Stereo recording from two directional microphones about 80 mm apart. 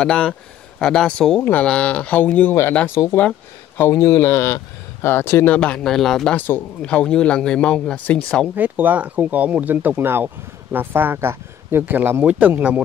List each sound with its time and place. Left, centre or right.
0.0 s speech: centre
3.0 s speech: left
3.7 s speech: left
5.5 s speech: centre
6.3 s speech: left
6.8 s speech: centre
8.5 s speech: right